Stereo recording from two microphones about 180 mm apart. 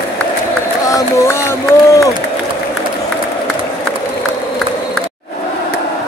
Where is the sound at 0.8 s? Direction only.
15° left (ahead or behind).